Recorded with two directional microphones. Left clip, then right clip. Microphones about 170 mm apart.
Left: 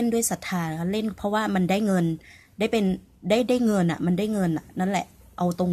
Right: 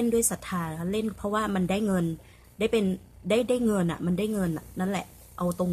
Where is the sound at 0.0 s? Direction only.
15° left (ahead or behind).